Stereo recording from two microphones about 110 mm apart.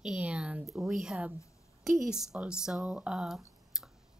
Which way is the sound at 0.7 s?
5° right (ahead or behind).